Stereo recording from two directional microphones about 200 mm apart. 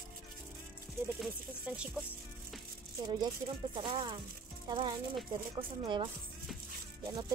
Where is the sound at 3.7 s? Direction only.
25° right (ahead or behind).